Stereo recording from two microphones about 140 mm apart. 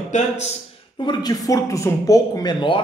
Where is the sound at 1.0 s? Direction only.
25° left (ahead or behind).